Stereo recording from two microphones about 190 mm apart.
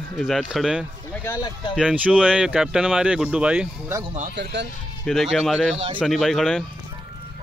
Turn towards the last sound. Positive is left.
turn(degrees=0)  # may be behind; listen again after turning